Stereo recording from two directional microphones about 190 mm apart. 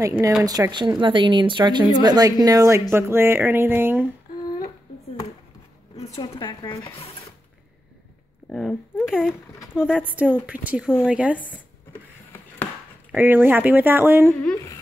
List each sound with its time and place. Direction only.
0.0 s speech: 15° right (ahead or behind)
6.3 s speech: 25° left (ahead or behind)
8.5 s speech: centre (ahead or behind)
11.9 s printer: 10° left (ahead or behind)
13.1 s speech: 10° right (ahead or behind)